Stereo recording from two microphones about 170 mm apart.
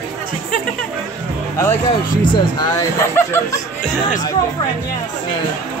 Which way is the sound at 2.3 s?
25° left (ahead or behind).